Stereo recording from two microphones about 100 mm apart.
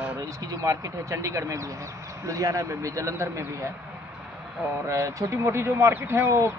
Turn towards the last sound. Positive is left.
turn(degrees=-25)  # may be behind; listen again after turning